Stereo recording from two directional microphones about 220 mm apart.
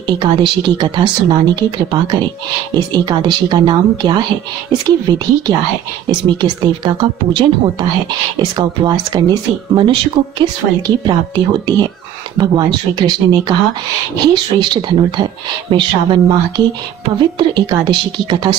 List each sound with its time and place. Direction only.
0.2 s a woman's voice: 20° right (ahead or behind)